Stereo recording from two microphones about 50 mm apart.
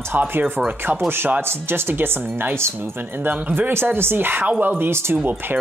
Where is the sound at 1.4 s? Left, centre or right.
Right.